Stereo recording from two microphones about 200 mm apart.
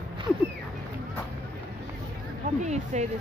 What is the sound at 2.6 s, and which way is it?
Speech, 35° right (ahead or behind).